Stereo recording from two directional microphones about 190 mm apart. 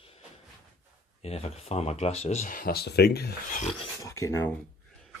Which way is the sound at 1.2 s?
30° left (ahead or behind).